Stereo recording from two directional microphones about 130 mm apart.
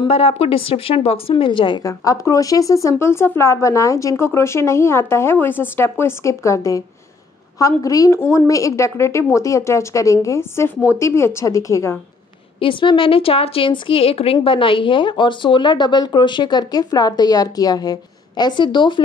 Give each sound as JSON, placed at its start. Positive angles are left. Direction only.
{"t": 0.1, "sound": "speech", "side_deg": 50}
{"t": 1.8, "sound": "speech", "side_deg": 25}
{"t": 12.5, "sound": "a woman's voice", "side_deg": 40}